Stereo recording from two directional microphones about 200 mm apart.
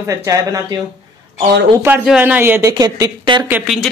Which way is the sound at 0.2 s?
15° right (ahead or behind).